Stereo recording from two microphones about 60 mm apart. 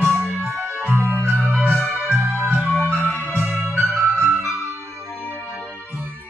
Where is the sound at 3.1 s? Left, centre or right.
Right.